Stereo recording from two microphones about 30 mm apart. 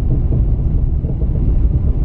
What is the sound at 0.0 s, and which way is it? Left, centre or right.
Vehicle, centre.